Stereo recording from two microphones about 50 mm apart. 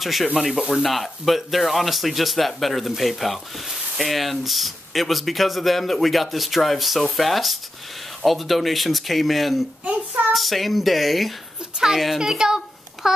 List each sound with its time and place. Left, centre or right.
0.0 s speech: centre
11.7 s a child's voice: centre
12.2 s a sound: centre